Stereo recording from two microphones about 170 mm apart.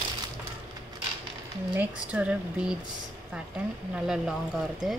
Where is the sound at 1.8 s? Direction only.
10° right (ahead or behind).